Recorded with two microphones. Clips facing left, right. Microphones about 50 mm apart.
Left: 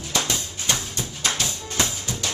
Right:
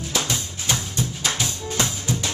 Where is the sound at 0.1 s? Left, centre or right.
Centre.